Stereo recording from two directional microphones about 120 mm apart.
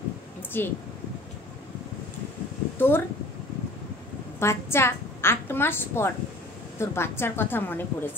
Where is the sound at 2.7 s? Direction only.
20° left (ahead or behind).